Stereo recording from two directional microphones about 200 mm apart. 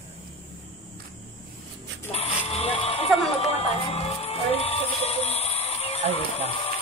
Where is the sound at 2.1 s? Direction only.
30° left (ahead or behind).